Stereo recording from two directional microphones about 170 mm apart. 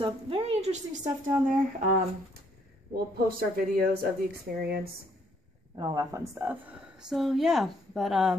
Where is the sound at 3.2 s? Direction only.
60° right (ahead or behind).